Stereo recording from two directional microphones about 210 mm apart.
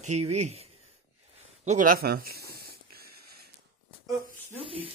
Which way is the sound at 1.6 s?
35° right (ahead or behind).